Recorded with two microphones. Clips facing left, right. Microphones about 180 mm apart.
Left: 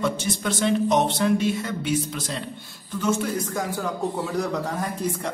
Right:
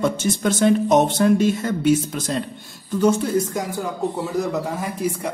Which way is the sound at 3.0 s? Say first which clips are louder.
Right 6 dB; 35° right (ahead or behind).